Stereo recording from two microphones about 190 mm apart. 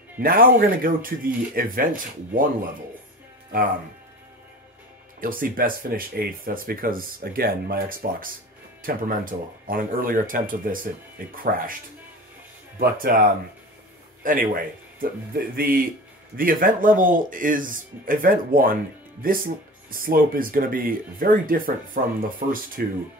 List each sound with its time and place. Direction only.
0.2 s speech: 50° right (ahead or behind)
5.2 s speech: 45° right (ahead or behind)
12.7 s speech: 50° right (ahead or behind)